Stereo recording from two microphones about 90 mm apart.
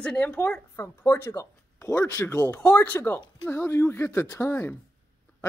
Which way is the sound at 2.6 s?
15° left (ahead or behind).